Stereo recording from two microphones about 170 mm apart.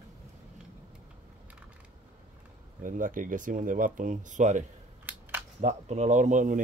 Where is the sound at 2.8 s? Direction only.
50° right (ahead or behind).